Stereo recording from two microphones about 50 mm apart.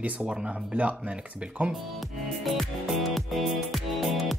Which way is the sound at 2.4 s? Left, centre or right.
Centre.